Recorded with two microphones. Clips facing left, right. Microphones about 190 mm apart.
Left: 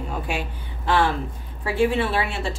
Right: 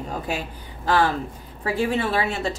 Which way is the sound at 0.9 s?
40° right (ahead or behind).